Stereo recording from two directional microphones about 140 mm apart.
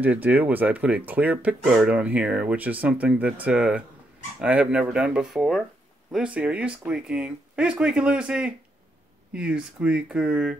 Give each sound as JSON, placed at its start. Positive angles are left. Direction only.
{"t": 0.0, "sound": "speech", "side_deg": -10}